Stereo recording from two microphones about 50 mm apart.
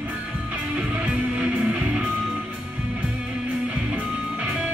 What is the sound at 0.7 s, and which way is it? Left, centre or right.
Music, right.